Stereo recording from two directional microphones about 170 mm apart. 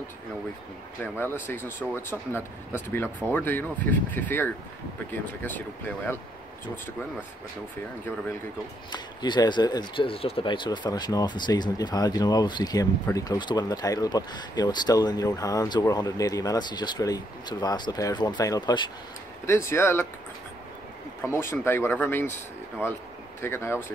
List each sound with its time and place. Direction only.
1.0 s speech: 15° left (ahead or behind)
8.9 s speech: 25° left (ahead or behind)
21.2 s speech: 15° left (ahead or behind)